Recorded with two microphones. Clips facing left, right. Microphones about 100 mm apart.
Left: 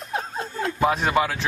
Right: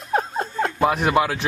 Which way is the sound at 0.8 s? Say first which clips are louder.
Right 2 dB; 5° right (ahead or behind).